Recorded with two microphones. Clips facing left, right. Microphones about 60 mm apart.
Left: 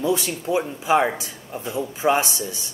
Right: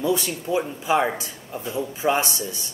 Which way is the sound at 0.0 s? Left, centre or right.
Left.